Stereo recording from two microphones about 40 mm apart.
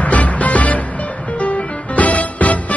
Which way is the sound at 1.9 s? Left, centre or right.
Left.